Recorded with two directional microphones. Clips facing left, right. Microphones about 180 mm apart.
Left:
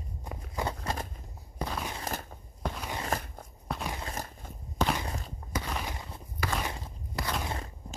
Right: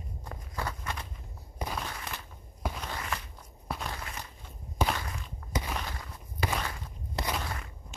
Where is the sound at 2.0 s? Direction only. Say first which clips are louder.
Left 5 dB; 45° left (ahead or behind).